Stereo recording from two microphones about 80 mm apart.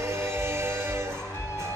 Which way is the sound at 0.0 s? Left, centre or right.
Right.